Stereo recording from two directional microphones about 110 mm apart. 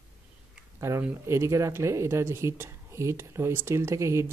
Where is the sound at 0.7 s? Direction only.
25° right (ahead or behind).